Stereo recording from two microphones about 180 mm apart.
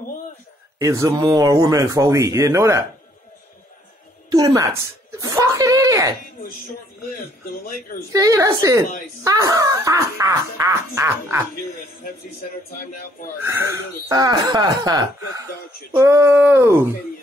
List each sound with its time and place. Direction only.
0.7 s speech: 15° right (ahead or behind)
4.3 s speech: 20° right (ahead or behind)
5.1 s chuckle: 15° right (ahead or behind)
7.2 s speech: 50° left (ahead or behind)
8.1 s speech: 20° right (ahead or behind)
14.0 s speech: 20° right (ahead or behind)